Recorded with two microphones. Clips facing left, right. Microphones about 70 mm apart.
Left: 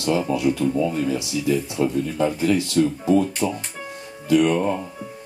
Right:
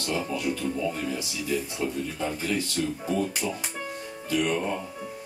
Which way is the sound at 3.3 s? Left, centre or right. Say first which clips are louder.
Left 6 dB; centre.